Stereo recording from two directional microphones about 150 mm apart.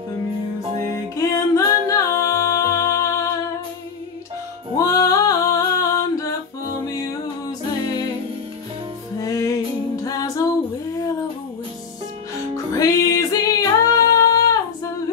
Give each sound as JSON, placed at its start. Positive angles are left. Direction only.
{"t": 1.1, "sound": "music", "side_deg": 20}
{"t": 4.7, "sound": "music", "side_deg": 20}
{"t": 9.2, "sound": "music", "side_deg": 20}
{"t": 10.0, "sound": "a capella", "side_deg": 25}
{"t": 12.7, "sound": "music", "side_deg": 20}